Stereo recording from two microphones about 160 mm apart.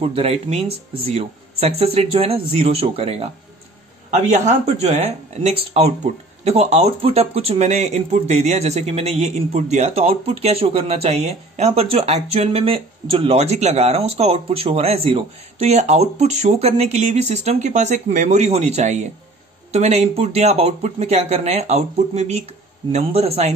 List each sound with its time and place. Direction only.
0.0 s speech: 35° right (ahead or behind)